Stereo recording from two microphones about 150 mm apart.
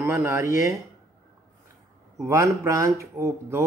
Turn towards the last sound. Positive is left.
turn(degrees=-20)  # may be behind; listen again after turning